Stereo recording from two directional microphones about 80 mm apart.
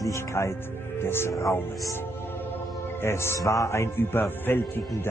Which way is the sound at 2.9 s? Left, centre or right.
Left.